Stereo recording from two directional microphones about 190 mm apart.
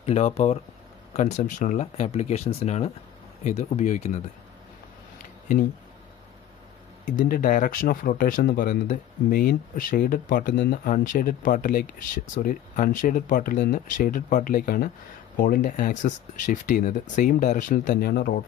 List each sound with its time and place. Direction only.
0.0 s speech: 35° left (ahead or behind)
7.1 s speech: 45° left (ahead or behind)